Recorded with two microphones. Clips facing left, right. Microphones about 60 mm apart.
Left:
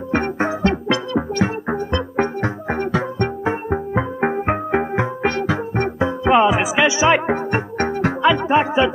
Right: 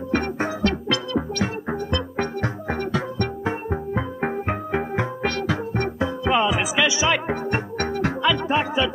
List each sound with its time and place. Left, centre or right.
0.1 s music: left